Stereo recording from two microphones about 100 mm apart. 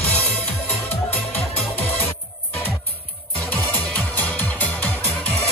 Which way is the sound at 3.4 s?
15° left (ahead or behind).